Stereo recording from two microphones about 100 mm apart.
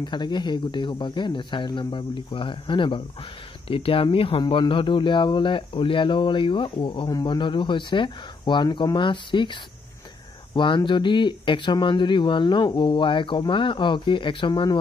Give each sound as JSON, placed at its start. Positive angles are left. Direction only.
{"t": 0.0, "sound": "speech", "side_deg": 50}